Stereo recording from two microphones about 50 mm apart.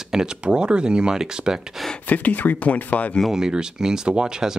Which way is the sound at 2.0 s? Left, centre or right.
Left.